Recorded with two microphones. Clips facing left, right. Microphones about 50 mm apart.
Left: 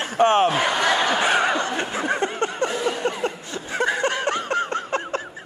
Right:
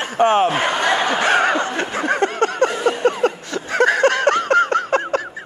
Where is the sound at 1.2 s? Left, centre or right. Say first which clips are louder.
Right 4 dB; right.